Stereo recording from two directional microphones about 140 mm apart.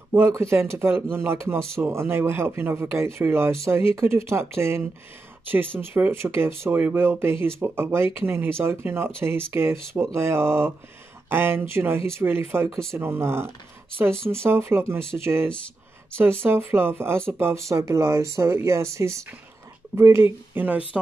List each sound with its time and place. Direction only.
0.1 s speech: 20° right (ahead or behind)